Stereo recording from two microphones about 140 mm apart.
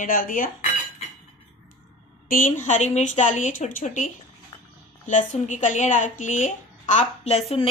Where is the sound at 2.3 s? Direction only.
70° left (ahead or behind).